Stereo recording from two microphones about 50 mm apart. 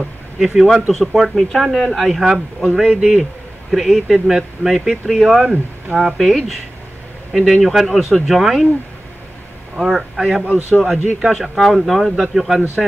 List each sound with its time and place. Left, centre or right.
0.4 s a man's voice: centre
5.4 s speech: right
6.1 s speech: centre
7.6 s speech: centre
9.8 s a man's voice: centre